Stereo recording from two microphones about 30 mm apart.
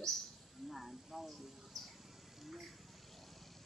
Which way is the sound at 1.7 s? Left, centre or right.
Centre.